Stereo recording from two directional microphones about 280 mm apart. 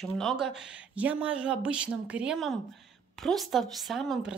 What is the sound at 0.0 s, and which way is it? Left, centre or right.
A woman's voice, centre.